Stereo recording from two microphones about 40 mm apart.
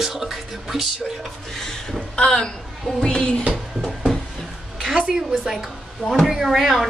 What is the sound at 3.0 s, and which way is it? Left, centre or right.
Speech, left.